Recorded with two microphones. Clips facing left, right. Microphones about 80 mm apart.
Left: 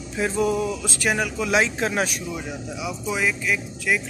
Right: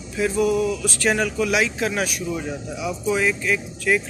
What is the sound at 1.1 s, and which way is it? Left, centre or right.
Speech, centre.